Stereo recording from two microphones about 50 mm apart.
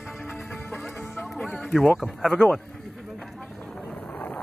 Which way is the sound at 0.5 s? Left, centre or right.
Centre.